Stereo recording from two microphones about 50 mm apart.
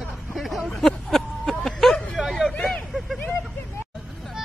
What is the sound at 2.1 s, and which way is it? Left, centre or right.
Hubbub, centre.